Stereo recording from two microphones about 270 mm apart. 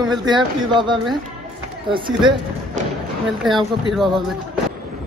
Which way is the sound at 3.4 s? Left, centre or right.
Centre.